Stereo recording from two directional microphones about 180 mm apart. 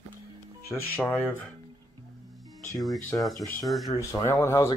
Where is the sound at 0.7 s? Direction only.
10° left (ahead or behind).